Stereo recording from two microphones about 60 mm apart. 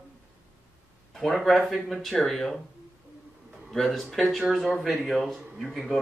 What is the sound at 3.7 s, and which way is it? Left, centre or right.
Speech, centre.